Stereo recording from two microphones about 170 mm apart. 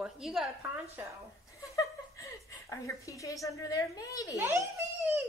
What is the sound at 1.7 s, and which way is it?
A woman's voice, 20° left (ahead or behind).